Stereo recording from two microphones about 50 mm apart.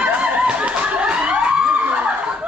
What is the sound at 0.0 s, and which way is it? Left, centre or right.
Snicker, right.